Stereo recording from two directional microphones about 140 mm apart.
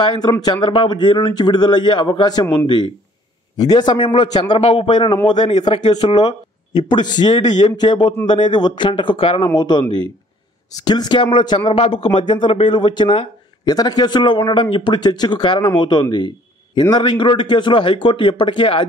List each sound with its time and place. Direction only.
0.0 s speech: 30° left (ahead or behind)